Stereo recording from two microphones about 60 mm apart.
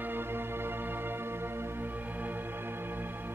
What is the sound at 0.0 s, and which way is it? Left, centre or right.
Music, right.